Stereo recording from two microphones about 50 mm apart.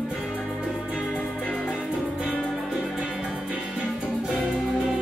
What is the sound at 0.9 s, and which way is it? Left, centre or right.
Music, left.